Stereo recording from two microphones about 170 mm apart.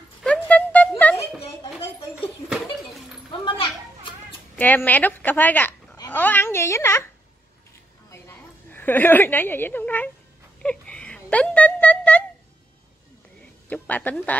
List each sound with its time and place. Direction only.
0.2 s music: 5° left (ahead or behind)
1.1 s a sound: 35° left (ahead or behind)
3.4 s children playing: 30° left (ahead or behind)
4.6 s a woman's voice: 10° left (ahead or behind)
8.1 s a woman's voice: 10° left (ahead or behind)
10.6 s a sound: 5° left (ahead or behind)
13.7 s a woman's voice: 10° left (ahead or behind)